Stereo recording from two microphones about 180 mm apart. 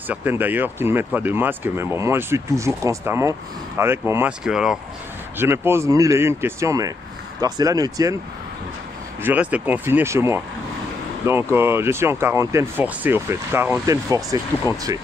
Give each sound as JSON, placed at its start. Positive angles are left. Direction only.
{"t": 0.1, "sound": "speech", "side_deg": -10}
{"t": 9.2, "sound": "speech", "side_deg": -10}